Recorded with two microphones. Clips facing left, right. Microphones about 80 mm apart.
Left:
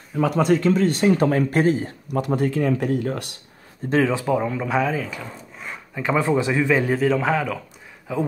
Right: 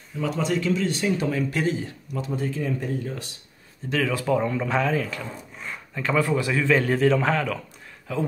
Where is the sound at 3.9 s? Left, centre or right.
Left.